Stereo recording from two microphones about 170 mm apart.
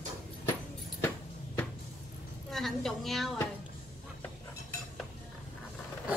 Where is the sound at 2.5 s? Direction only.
Centre (ahead or behind).